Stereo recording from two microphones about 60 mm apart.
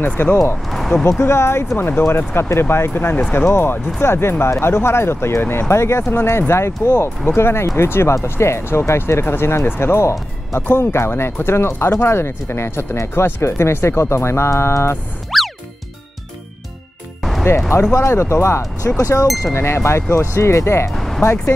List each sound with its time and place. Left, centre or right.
0.0 s speech: left
0.7 s a sound: centre
1.2 s speech: left
1.8 s speech: left
5.7 s speech: left
15.3 s music: centre
17.2 s music: centre
17.7 s speech: left
18.9 s speech: left
19.5 s speech: left
20.2 s speech: left
20.9 s music: centre